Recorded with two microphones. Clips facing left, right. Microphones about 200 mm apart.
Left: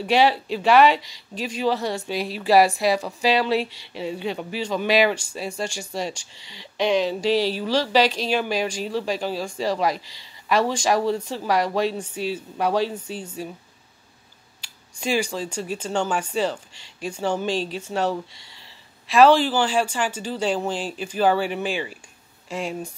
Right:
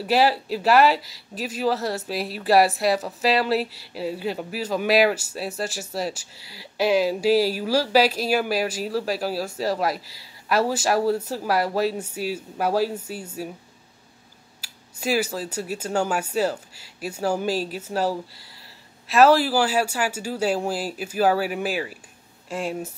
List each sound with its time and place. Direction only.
0.0 s speech: 5° right (ahead or behind)
14.6 s speech: 5° right (ahead or behind)